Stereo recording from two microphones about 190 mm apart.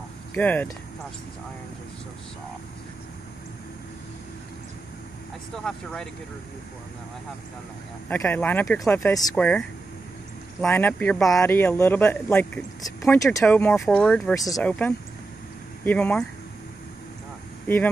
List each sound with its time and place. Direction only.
0.3 s a man's voice: 10° left (ahead or behind)
5.6 s speech: 5° left (ahead or behind)
8.1 s a man's voice: 10° left (ahead or behind)
9.3 s a man's voice: 5° left (ahead or behind)
14.3 s speech: 20° left (ahead or behind)
14.6 s a man's voice: 10° left (ahead or behind)